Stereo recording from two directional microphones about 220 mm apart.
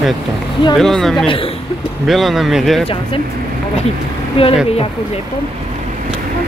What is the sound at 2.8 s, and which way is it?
Speech, 25° left (ahead or behind).